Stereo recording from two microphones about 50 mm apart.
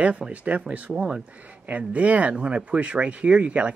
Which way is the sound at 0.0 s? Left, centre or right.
Right.